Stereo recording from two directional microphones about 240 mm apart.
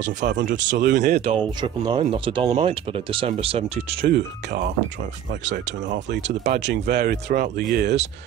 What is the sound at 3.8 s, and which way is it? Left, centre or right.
Speech, right.